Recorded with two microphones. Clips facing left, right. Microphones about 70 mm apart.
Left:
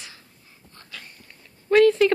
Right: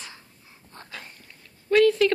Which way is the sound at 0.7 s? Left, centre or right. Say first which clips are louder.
Right 2 dB; right.